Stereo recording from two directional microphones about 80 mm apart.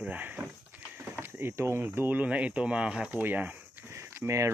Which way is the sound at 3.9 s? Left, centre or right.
Right.